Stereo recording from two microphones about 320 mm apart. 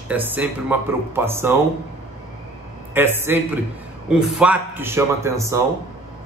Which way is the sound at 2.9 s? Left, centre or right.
Centre.